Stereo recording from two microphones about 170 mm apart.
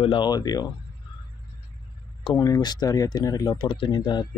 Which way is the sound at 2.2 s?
25° left (ahead or behind).